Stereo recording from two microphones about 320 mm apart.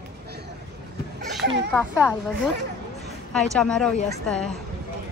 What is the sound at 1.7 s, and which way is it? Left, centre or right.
Speech, centre.